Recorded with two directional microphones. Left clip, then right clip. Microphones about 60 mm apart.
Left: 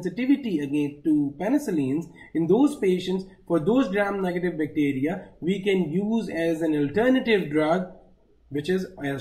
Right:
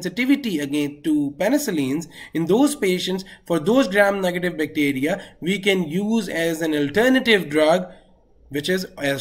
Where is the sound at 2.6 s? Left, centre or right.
Right.